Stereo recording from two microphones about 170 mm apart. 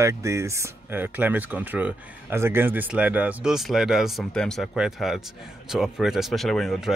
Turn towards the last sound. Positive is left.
turn(degrees=0)  # may be behind; listen again after turning